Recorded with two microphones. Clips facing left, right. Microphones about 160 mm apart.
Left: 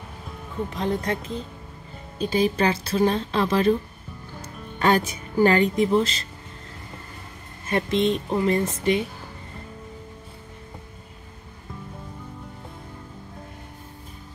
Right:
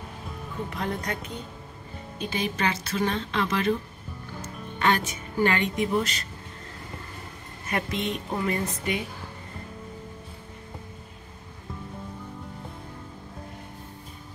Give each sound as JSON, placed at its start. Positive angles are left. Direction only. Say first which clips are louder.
{"t": 0.7, "sound": "speech", "louder": "left 6 dB", "side_deg": 25}
{"t": 7.6, "sound": "speech", "louder": "left 7 dB", "side_deg": 30}